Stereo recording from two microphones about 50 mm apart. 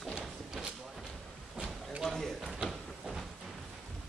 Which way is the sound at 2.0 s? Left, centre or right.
Centre.